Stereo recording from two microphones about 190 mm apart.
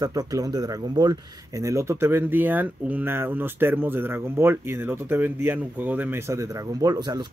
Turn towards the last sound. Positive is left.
turn(degrees=-20)  # may be behind; listen again after turning